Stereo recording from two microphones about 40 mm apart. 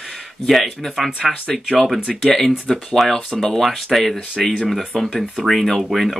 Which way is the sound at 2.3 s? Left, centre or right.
Centre.